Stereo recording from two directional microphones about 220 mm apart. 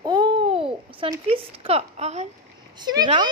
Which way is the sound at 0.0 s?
20° right (ahead or behind).